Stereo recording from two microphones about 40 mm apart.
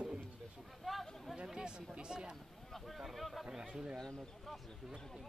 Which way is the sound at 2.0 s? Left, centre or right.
Right.